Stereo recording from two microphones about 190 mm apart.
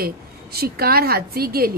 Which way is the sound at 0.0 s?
55° right (ahead or behind).